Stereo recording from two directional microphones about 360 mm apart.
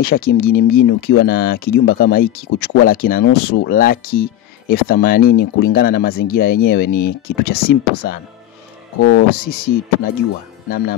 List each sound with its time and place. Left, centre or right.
0.0 s speech: left